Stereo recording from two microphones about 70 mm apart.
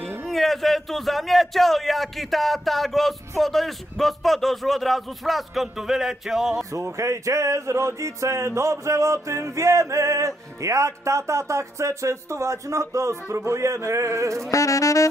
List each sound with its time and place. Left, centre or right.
0.3 s a man's voice: centre
6.6 s speech: right
14.5 s saxophone: left